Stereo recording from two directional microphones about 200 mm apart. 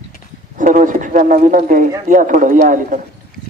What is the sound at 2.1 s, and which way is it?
Speech, 40° right (ahead or behind).